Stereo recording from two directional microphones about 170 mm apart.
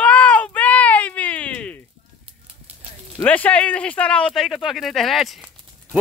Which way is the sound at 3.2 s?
10° left (ahead or behind).